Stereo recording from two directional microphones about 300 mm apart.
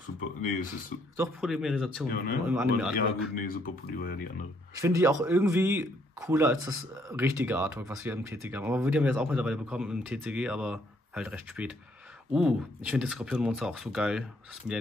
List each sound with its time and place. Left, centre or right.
0.4 s speech: left
1.1 s speech: centre
2.0 s speech: left
2.4 s speech: centre
3.0 s speech: left
4.7 s speech: centre